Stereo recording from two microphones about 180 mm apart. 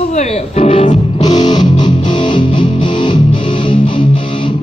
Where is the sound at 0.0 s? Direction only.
40° left (ahead or behind).